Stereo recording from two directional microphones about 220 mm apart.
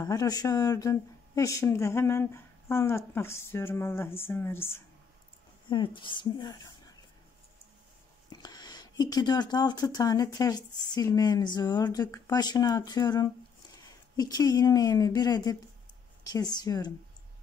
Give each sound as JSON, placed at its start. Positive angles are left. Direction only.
{"t": 0.0, "sound": "speech", "side_deg": 15}
{"t": 5.7, "sound": "a woman's voice", "side_deg": 20}
{"t": 8.3, "sound": "speech", "side_deg": 20}